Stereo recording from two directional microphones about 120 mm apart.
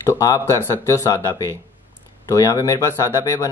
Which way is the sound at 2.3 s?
25° left (ahead or behind).